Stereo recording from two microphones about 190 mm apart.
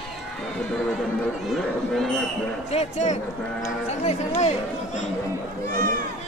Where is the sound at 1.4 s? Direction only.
Centre (ahead or behind).